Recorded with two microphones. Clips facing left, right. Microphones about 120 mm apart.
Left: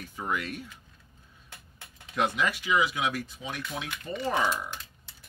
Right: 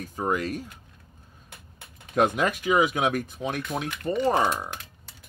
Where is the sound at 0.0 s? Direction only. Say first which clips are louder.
Right 6 dB; 40° right (ahead or behind).